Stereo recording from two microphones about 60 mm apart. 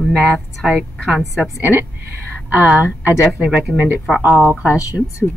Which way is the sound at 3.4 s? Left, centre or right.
Centre.